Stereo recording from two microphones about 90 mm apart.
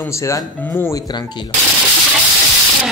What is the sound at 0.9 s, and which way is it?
Speech, 45° left (ahead or behind).